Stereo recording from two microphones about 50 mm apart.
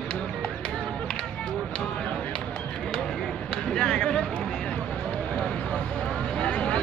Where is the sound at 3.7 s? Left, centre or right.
Centre.